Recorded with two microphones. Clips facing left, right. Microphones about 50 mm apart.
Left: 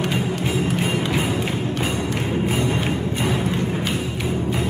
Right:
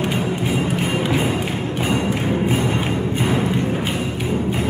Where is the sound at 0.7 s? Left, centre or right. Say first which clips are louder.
Right 2 dB; centre.